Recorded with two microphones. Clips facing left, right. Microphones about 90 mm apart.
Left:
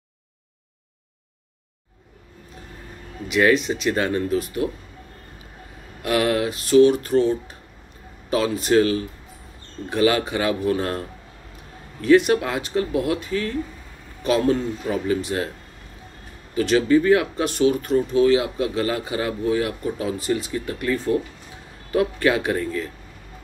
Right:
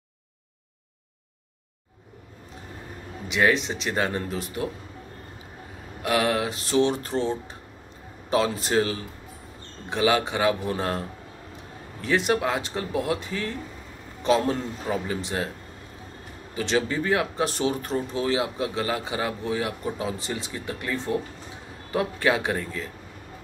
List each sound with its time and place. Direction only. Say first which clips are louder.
3.3 s speech: left 4 dB; 25° right (ahead or behind)
6.0 s speech: left 3 dB; 25° right (ahead or behind)
12.0 s speech: left 7 dB; 25° right (ahead or behind)
14.9 s speech: left 5 dB; 25° right (ahead or behind)
16.5 s speech: left 8 dB; 20° right (ahead or behind)